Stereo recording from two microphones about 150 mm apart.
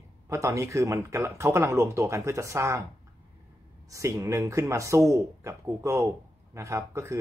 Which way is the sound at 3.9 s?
20° right (ahead or behind).